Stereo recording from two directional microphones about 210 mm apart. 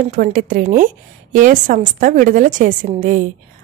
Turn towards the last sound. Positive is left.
turn(degrees=-40)  # may be behind; listen again after turning